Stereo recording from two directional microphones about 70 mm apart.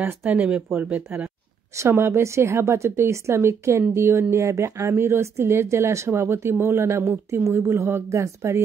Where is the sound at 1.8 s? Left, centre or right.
Right.